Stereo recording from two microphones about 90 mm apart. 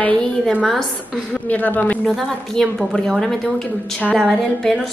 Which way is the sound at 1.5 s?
15° left (ahead or behind).